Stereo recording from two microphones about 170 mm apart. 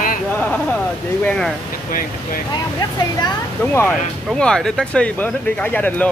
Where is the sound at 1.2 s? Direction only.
5° left (ahead or behind).